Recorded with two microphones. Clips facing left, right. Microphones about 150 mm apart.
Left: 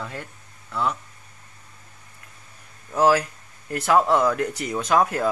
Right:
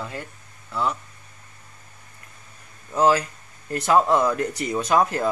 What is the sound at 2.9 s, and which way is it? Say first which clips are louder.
A man's voice: even; 5° left (ahead or behind).